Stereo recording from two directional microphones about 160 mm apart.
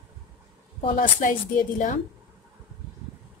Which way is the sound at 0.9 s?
55° left (ahead or behind).